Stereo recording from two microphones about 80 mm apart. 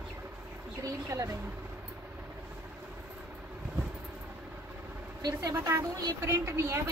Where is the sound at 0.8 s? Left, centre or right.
Right.